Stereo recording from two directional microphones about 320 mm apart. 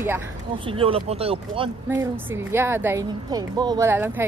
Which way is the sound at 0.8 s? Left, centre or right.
Centre.